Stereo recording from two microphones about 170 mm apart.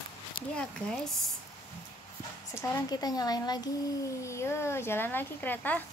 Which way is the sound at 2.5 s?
20° left (ahead or behind).